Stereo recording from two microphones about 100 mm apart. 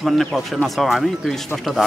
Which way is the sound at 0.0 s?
Centre (ahead or behind).